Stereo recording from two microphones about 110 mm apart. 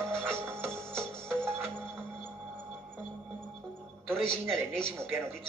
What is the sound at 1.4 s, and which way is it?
Music, 20° right (ahead or behind).